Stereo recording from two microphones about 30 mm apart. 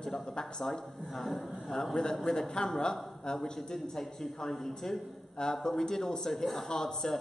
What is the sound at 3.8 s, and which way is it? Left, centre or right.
Speech, centre.